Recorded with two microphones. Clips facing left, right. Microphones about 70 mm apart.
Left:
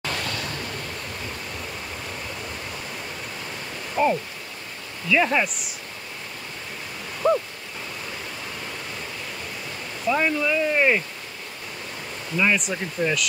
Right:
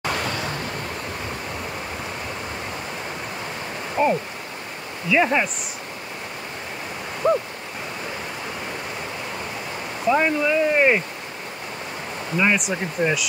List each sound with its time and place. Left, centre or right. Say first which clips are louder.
0.0 s vehicle: right 4 dB; centre
3.9 s speech: right 1 dB; centre
7.2 s a sound: right 1 dB; centre
10.0 s speech: right 3 dB; centre
12.4 s speech: right 2 dB; centre